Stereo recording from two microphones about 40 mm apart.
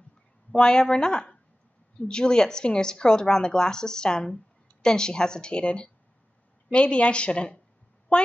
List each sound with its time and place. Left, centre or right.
0.5 s a woman's voice: centre